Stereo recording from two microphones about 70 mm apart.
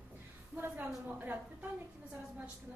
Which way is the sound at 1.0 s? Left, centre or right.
Right.